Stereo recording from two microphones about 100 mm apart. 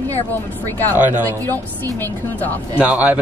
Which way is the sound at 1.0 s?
20° right (ahead or behind).